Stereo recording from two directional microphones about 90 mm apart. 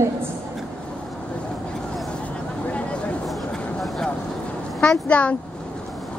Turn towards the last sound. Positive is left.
turn(degrees=15)  # may be behind; listen again after turning